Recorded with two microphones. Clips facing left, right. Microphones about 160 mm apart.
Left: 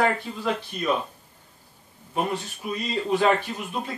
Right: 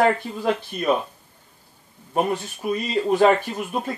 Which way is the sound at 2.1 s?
50° right (ahead or behind).